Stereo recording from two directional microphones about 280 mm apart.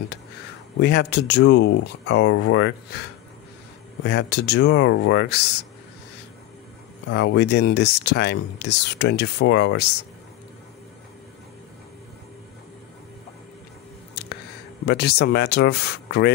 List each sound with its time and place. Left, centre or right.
0.7 s speech: left
4.0 s speech: left
7.1 s speech: left
14.9 s speech: left